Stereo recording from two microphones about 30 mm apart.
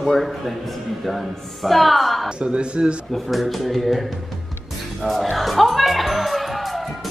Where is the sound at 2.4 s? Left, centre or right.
Right.